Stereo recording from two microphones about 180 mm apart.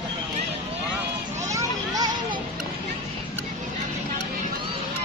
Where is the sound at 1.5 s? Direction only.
20° right (ahead or behind).